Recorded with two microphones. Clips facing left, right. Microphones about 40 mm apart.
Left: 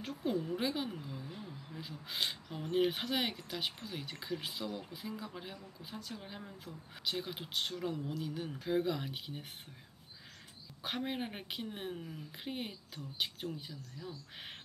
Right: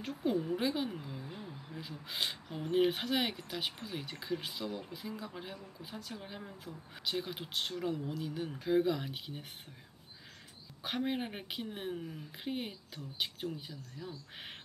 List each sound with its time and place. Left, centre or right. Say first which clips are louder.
0.2 s speech: right 2 dB; centre
0.9 s a sound: right 1 dB; centre
1.8 s speech: even; centre
10.8 s speech: right 3 dB; centre
14.0 s speech: right 1 dB; right